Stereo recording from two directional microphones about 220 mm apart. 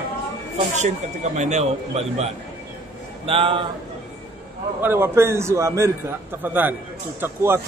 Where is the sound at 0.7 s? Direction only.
30° right (ahead or behind).